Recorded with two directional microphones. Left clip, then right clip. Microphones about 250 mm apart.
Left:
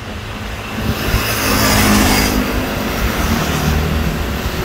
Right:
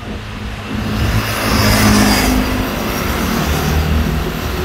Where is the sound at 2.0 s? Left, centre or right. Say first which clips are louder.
Right 1 dB; right.